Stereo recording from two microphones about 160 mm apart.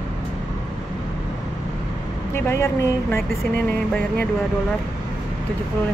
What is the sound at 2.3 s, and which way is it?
Speech, 15° left (ahead or behind).